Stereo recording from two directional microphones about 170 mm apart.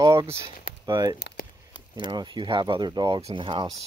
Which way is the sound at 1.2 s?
70° left (ahead or behind).